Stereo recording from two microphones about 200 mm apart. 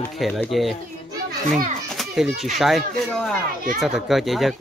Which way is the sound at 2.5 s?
Centre (ahead or behind).